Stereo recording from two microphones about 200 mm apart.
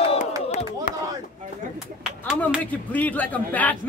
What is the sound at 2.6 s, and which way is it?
Speech, 10° left (ahead or behind).